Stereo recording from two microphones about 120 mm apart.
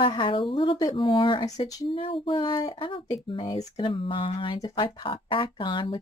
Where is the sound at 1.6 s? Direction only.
30° left (ahead or behind).